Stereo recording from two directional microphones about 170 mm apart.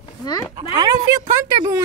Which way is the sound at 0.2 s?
20° left (ahead or behind).